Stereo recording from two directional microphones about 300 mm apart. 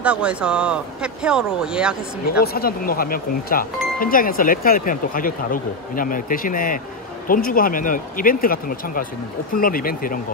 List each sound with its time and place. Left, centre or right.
0.0 s speech: centre
2.4 s speech: left